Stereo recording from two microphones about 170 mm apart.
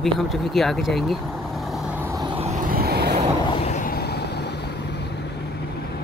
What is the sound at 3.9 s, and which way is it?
Vehicle, 70° left (ahead or behind).